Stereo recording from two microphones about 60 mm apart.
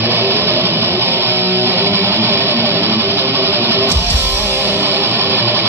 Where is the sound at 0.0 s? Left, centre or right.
Right.